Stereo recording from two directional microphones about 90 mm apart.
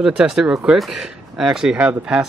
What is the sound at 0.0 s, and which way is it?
Speech, 5° right (ahead or behind).